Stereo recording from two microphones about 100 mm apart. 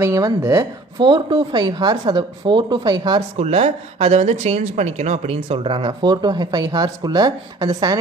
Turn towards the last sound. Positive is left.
turn(degrees=-40)  # may be behind; listen again after turning